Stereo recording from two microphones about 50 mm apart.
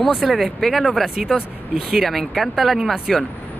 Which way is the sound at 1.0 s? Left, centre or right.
Centre.